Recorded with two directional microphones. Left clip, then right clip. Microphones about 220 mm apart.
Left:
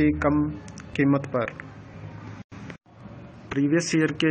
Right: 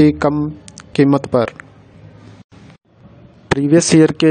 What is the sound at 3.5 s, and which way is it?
Speech, 55° right (ahead or behind).